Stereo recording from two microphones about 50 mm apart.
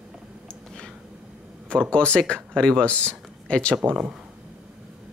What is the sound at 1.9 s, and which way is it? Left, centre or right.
Speech, centre.